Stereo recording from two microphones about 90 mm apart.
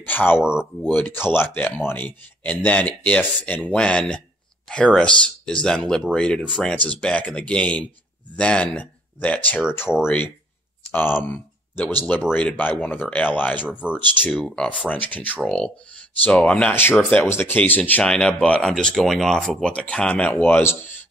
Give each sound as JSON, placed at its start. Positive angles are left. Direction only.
{"t": 0.0, "sound": "speech", "side_deg": 20}
{"t": 0.4, "sound": "speech", "side_deg": -10}
{"t": 0.8, "sound": "speech", "side_deg": 20}
{"t": 9.9, "sound": "speech", "side_deg": 5}
{"t": 10.9, "sound": "speech", "side_deg": 20}
{"t": 11.2, "sound": "a sound", "side_deg": 20}
{"t": 12.0, "sound": "speech", "side_deg": 20}
{"t": 13.7, "sound": "speech", "side_deg": -10}
{"t": 13.9, "sound": "speech", "side_deg": 20}
{"t": 14.3, "sound": "speech", "side_deg": 10}
{"t": 17.2, "sound": "speech", "side_deg": 25}
{"t": 18.0, "sound": "speech", "side_deg": 10}